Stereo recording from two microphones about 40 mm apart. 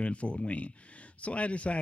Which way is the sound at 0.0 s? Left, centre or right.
Left.